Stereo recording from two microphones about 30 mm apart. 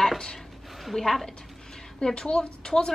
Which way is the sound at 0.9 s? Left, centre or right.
Left.